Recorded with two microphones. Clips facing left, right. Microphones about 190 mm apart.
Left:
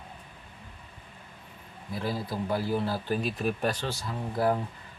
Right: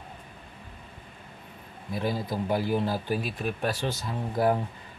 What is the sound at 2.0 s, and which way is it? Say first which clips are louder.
Speech: right 2 dB; 15° right (ahead or behind).